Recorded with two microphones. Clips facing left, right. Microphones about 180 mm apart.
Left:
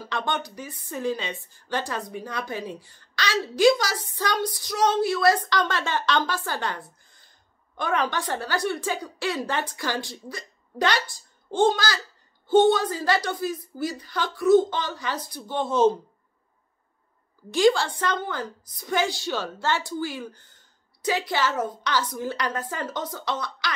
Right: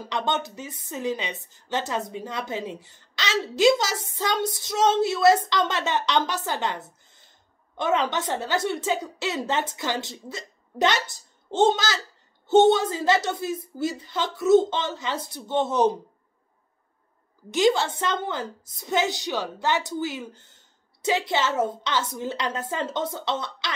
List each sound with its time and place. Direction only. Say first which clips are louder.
0.0 s a woman's voice: right 2 dB; 20° right (ahead or behind)
17.5 s a woman's voice: left 1 dB; 20° right (ahead or behind)